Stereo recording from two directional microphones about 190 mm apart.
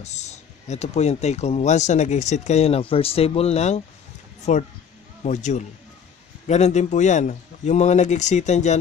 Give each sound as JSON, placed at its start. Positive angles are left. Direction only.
{"t": 0.0, "sound": "speech", "side_deg": 35}